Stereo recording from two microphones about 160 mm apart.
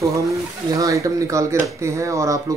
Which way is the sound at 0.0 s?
20° right (ahead or behind).